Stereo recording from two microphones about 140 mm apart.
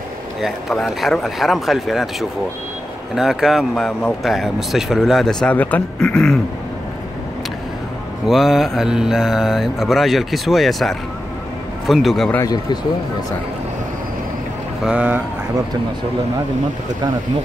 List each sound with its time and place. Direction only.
0.4 s speech: centre (ahead or behind)
8.3 s speech: centre (ahead or behind)
12.4 s a man's voice: 30° left (ahead or behind)
14.9 s speech: 10° right (ahead or behind)